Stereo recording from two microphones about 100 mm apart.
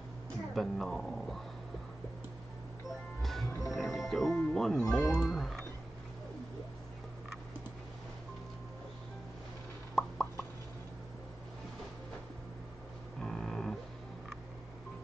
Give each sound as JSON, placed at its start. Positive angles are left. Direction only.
{"t": 0.6, "sound": "speech", "side_deg": 5}
{"t": 3.2, "sound": "music", "side_deg": 0}
{"t": 10.0, "sound": "plop", "side_deg": 5}
{"t": 13.2, "sound": "a sound", "side_deg": 5}